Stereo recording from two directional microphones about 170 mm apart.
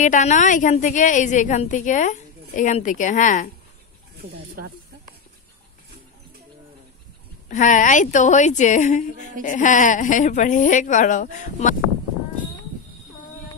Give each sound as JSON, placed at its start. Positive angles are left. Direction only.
{"t": 0.0, "sound": "a woman's voice", "side_deg": 45}
{"t": 7.4, "sound": "a woman's voice", "side_deg": 50}